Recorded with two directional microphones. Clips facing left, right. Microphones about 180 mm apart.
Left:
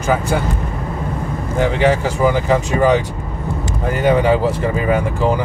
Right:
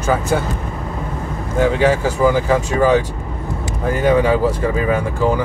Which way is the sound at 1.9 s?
15° left (ahead or behind).